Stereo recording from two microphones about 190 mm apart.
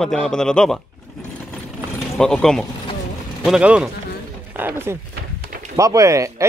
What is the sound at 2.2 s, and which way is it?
A man's voice, 5° left (ahead or behind).